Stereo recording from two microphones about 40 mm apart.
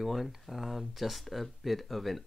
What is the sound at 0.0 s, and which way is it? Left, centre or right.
Speech, centre.